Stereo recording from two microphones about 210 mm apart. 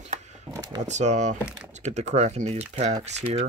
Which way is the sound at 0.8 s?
35° right (ahead or behind).